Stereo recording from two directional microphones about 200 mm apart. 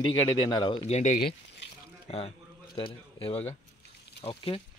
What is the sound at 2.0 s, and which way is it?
A man's voice, 30° left (ahead or behind).